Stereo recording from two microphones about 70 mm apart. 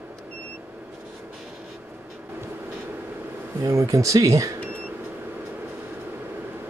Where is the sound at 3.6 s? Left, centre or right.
Right.